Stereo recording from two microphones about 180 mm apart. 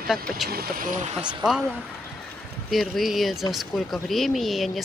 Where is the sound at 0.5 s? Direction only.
55° right (ahead or behind).